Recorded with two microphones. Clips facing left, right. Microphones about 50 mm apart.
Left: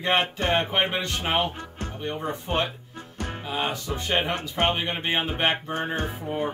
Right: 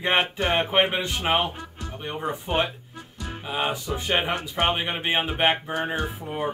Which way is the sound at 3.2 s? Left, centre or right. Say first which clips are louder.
Left 3 dB; left.